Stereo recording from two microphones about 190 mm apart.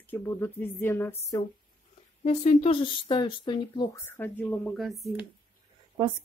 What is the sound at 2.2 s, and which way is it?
Speech, 35° left (ahead or behind).